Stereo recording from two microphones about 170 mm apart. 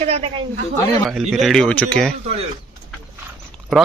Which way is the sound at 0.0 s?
40° right (ahead or behind).